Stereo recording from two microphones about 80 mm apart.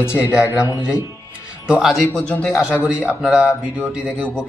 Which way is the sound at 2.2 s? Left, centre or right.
Centre.